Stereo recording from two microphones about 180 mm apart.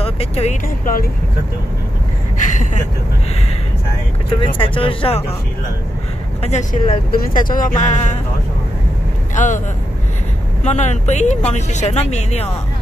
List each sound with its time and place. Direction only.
0.0 s speech: 35° left (ahead or behind)
0.8 s speech: 50° left (ahead or behind)
4.6 s speech: 30° left (ahead or behind)
6.4 s speech: 35° left (ahead or behind)
9.3 s speech: 45° left (ahead or behind)
10.6 s speech: 40° left (ahead or behind)